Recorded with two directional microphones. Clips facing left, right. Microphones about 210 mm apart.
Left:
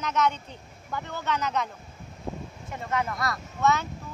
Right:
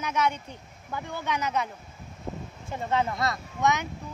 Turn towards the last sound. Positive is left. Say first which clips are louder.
# left 1 dB
turn(degrees=-15)  # may be behind; listen again after turning